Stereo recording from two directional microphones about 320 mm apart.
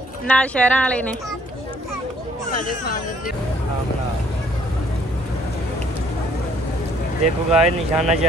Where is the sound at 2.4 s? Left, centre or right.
Left.